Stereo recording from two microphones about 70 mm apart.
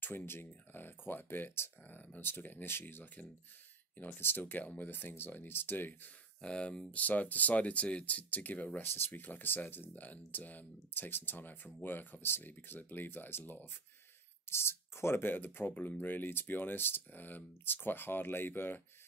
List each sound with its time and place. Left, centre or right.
0.0 s speech: left
6.4 s speech: centre; by 18.8 s left